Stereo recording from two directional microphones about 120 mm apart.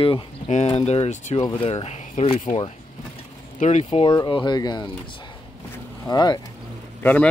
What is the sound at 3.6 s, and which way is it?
Speech, 75° left (ahead or behind).